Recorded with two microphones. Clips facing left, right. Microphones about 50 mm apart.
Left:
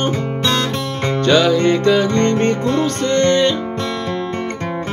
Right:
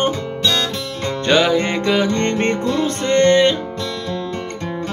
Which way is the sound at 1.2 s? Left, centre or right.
Centre.